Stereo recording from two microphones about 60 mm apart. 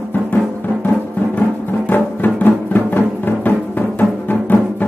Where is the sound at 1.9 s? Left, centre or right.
Left.